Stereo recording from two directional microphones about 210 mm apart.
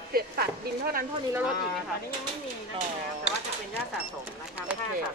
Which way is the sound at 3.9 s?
5° right (ahead or behind).